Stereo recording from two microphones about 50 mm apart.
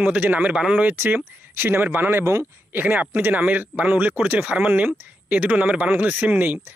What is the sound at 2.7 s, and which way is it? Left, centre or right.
Speech, right.